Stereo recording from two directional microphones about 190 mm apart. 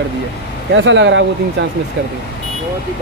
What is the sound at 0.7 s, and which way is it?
Speech, 75° right (ahead or behind).